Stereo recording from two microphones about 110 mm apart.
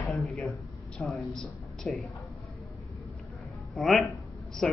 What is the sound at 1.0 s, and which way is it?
Speech, 15° left (ahead or behind).